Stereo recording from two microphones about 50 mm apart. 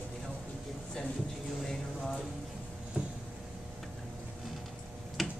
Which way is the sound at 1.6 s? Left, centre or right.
Centre.